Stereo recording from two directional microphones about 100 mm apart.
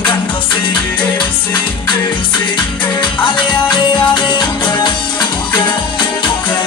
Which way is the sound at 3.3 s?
50° left (ahead or behind).